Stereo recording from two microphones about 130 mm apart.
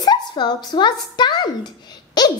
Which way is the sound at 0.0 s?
35° left (ahead or behind).